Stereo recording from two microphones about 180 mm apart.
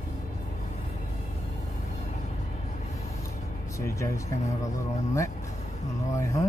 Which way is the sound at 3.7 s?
15° left (ahead or behind).